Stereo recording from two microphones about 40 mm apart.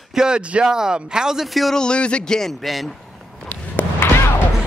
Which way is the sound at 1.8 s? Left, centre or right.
Left.